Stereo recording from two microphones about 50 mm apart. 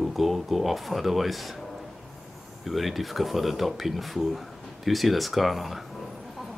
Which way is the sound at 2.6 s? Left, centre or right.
Centre.